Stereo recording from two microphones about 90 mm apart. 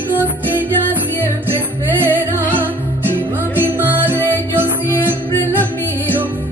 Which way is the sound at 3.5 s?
20° right (ahead or behind).